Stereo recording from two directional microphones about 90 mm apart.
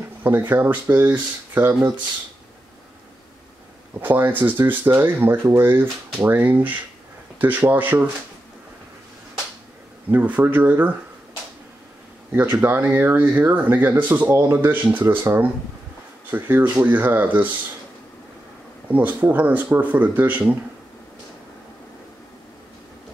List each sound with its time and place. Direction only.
0.2 s speech: 25° right (ahead or behind)
4.0 s speech: 20° right (ahead or behind)
10.1 s speech: 15° right (ahead or behind)
12.3 s speech: 20° right (ahead or behind)
18.9 s speech: 20° right (ahead or behind)